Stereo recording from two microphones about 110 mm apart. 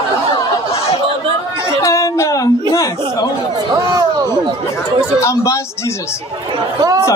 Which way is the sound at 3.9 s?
35° right (ahead or behind).